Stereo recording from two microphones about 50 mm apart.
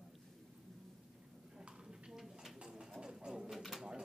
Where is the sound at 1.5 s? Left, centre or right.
Centre.